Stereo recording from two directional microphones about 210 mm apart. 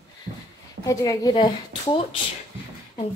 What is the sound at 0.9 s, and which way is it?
A woman's voice, 15° left (ahead or behind).